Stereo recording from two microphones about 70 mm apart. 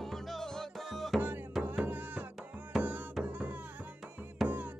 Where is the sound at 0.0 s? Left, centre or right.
Centre.